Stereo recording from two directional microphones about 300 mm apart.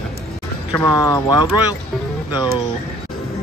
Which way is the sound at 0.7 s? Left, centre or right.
Centre.